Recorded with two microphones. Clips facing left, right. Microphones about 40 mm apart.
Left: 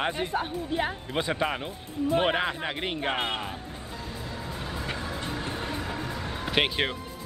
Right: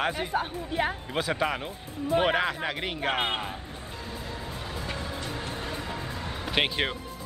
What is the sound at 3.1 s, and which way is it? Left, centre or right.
Speech, centre.